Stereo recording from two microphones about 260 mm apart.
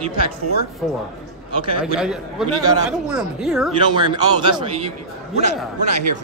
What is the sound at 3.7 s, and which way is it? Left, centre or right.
A man's voice, centre.